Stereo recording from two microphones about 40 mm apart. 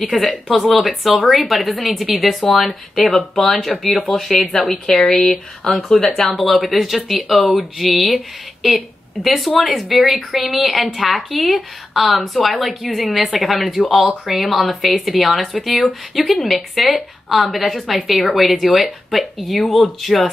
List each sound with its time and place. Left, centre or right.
0.5 s speech: centre
2.4 s speech: centre
6.2 s speech: centre